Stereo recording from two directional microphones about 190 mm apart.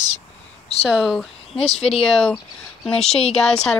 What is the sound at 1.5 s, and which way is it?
Speech, 30° left (ahead or behind).